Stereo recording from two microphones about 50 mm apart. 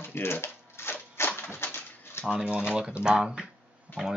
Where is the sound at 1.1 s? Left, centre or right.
Left.